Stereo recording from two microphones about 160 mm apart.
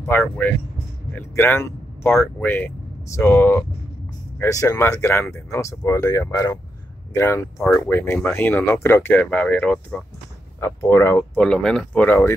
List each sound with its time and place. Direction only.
0.0 s speech: 15° left (ahead or behind)
11.4 s speech: 5° left (ahead or behind)